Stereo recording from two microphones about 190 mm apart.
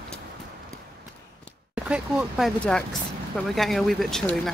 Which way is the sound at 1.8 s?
5° right (ahead or behind).